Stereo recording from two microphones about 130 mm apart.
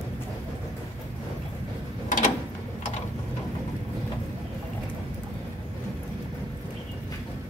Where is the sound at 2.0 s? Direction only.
80° left.